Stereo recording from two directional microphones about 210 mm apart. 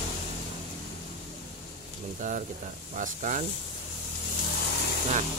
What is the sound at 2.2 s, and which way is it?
Speech, 35° right (ahead or behind).